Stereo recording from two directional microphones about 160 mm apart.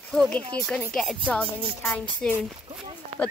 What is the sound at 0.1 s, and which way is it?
Speech, 5° left (ahead or behind).